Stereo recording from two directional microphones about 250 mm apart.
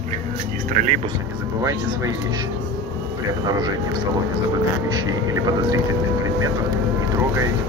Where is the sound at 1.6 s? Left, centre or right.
Centre.